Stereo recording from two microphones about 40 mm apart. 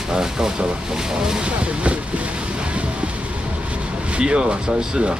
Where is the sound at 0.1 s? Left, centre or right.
Centre.